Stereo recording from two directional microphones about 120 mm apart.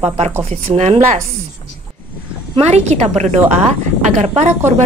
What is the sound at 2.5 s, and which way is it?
A woman's voice, 60° right (ahead or behind).